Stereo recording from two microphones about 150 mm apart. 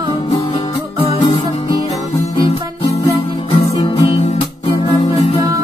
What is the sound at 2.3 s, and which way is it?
Music, 40° left (ahead or behind).